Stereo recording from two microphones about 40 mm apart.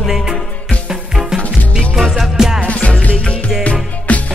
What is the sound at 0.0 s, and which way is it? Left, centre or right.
Music, centre.